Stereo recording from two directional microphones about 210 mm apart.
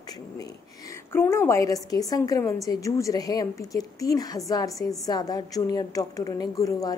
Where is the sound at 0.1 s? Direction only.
15° left (ahead or behind).